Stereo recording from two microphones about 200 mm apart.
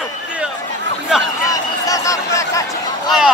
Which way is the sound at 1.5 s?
15° left (ahead or behind).